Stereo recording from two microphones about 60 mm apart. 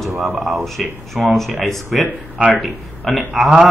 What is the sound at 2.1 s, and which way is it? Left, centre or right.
Speech, right.